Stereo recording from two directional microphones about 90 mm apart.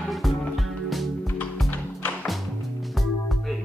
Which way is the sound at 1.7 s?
20° left (ahead or behind).